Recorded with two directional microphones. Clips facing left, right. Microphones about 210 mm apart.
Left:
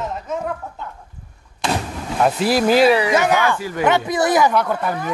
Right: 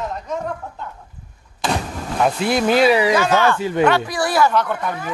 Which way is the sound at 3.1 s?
15° left (ahead or behind).